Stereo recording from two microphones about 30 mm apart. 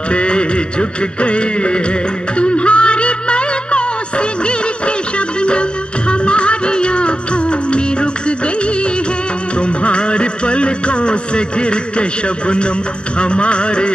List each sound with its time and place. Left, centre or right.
0.1 s music: left
9.6 s music: left